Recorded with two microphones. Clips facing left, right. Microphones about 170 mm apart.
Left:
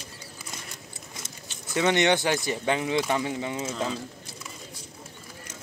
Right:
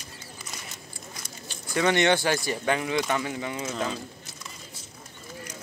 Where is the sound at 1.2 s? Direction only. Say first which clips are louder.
Right 2 dB; 20° left (ahead or behind).